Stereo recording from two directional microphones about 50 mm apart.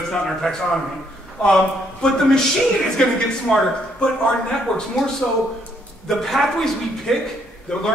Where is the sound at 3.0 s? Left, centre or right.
Centre.